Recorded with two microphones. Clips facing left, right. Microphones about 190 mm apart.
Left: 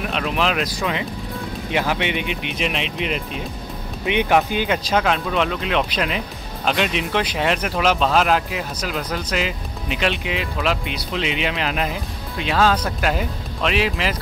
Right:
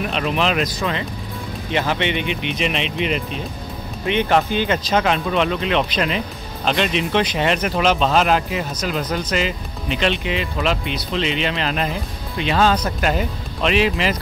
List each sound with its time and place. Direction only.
0.0 s speech: centre (ahead or behind)
4.0 s speech: 15° left (ahead or behind)